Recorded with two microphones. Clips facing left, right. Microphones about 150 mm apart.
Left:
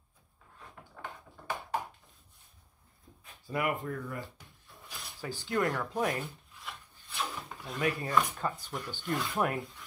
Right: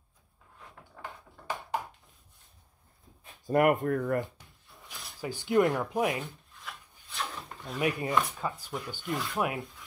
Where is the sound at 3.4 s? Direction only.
50° right (ahead or behind).